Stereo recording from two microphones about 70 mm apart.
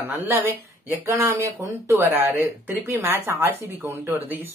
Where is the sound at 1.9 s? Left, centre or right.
Right.